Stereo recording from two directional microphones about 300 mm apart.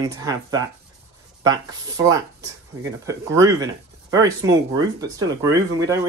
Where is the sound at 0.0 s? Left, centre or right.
Centre.